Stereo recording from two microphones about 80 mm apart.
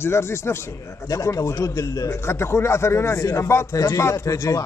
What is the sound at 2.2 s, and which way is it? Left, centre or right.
Speech, left.